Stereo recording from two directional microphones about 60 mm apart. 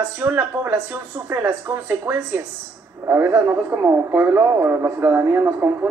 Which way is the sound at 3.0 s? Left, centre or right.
Right.